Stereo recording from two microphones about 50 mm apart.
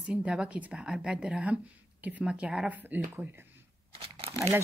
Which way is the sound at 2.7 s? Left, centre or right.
Right.